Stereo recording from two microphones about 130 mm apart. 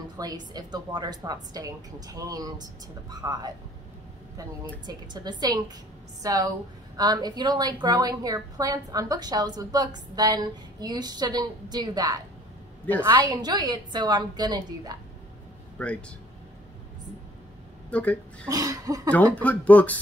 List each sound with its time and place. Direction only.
0.2 s a woman's voice: 30° right (ahead or behind)
4.8 s a woman's voice: 35° right (ahead or behind)
6.2 s cough: 25° right (ahead or behind)
7.0 s a woman's voice: 30° right (ahead or behind)
15.8 s speech: 10° left (ahead or behind)
17.8 s speech: 10° left (ahead or behind)
18.5 s cough: 30° right (ahead or behind)
19.0 s speech: 10° left (ahead or behind)